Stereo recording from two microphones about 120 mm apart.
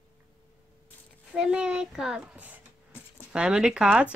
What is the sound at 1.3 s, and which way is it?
A woman's voice, 5° right (ahead or behind).